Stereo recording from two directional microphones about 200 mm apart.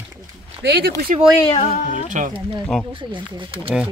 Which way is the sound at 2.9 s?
25° right (ahead or behind).